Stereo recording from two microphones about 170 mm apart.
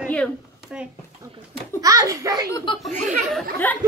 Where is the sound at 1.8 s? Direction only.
20° right (ahead or behind).